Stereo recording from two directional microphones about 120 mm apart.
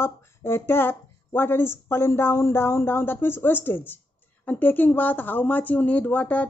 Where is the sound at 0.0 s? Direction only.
20° left (ahead or behind).